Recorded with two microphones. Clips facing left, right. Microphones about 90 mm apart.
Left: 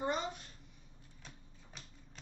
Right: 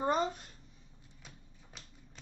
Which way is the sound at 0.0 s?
40° right (ahead or behind).